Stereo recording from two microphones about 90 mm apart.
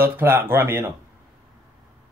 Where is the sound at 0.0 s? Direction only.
25° right (ahead or behind).